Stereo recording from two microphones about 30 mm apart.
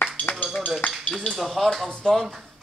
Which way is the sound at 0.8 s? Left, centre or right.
Left.